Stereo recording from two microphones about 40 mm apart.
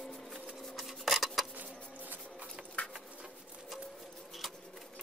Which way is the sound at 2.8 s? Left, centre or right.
Left.